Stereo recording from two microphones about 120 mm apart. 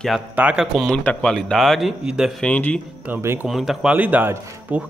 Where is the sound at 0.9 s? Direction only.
10° left (ahead or behind).